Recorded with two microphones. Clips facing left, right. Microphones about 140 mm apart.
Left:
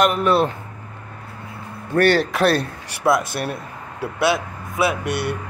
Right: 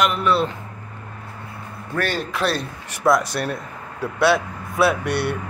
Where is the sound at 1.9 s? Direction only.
70° left (ahead or behind).